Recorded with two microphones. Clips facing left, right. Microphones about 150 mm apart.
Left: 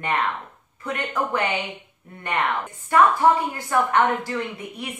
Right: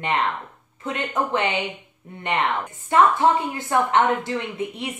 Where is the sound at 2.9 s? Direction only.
20° right (ahead or behind).